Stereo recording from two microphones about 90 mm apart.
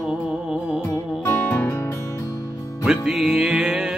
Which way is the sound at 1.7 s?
30° left (ahead or behind).